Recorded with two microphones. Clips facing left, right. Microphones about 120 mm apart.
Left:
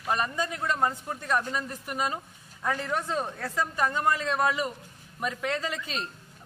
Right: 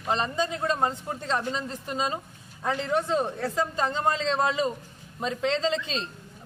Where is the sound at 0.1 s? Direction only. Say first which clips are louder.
Right 2 dB; 25° right (ahead or behind).